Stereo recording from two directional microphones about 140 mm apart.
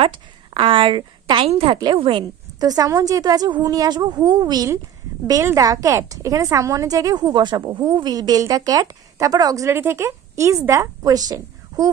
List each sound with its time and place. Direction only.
0.0 s a woman's voice: 40° right (ahead or behind)
2.6 s a woman's voice: 25° right (ahead or behind)